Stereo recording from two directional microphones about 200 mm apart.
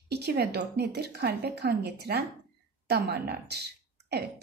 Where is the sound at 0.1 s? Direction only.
55° right (ahead or behind).